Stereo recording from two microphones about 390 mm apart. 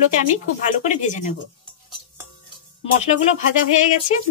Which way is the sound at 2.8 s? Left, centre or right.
Centre.